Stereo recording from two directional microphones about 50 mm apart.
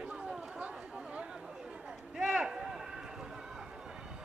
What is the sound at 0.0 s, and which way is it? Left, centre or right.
Chatter, right.